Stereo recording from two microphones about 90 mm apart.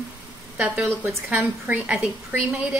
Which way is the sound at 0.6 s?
15° right (ahead or behind).